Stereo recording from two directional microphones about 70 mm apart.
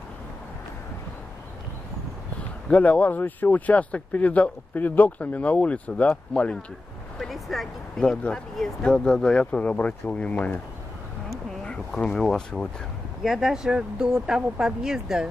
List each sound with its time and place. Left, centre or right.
2.7 s speech: left
7.2 s speech: centre
8.0 s speech: centre
11.6 s speech: centre
13.2 s speech: centre